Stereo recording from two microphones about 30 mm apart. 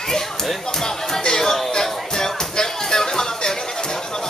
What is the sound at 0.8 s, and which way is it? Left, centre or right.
Music, centre.